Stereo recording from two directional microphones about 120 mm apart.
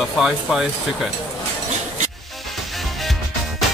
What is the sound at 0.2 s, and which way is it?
Speech, centre (ahead or behind).